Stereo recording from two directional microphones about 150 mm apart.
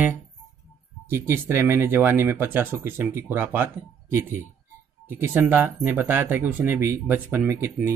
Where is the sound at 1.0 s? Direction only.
15° right (ahead or behind).